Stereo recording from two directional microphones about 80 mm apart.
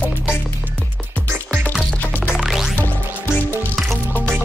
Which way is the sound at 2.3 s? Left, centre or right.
Centre.